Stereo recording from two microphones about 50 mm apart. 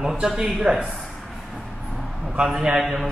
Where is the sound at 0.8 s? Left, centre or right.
Centre.